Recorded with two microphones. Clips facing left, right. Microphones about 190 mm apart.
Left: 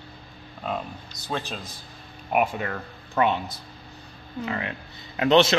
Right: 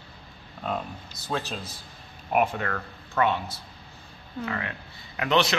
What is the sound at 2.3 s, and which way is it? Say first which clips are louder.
Speech: even; 10° left (ahead or behind).